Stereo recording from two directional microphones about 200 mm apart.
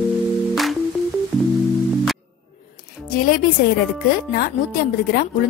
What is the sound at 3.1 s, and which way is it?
Music, 45° left (ahead or behind).